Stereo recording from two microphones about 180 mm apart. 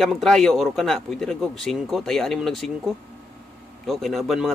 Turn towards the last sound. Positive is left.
turn(degrees=0)  # may be behind; listen again after turning